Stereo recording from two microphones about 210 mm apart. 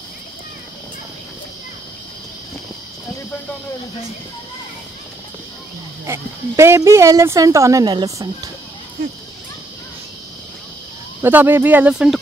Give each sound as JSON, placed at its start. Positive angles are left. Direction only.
{"t": 6.0, "sound": "speech", "side_deg": -10}
{"t": 11.2, "sound": "speech", "side_deg": -10}